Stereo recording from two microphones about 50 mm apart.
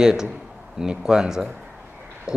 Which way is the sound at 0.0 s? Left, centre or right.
Centre.